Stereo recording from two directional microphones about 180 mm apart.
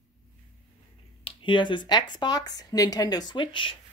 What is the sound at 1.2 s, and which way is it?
Speech, 25° left (ahead or behind).